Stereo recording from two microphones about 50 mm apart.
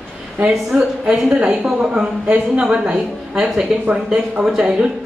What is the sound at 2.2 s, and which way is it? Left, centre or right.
A woman's voice, right.